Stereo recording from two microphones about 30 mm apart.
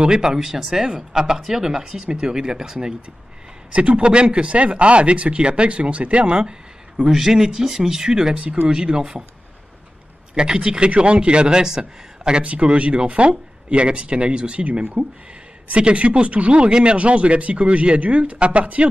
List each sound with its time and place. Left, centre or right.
0.0 s speech: right
3.7 s speech: right
7.1 s speech: centre
10.3 s speech: right
12.4 s speech: right
15.7 s speech: right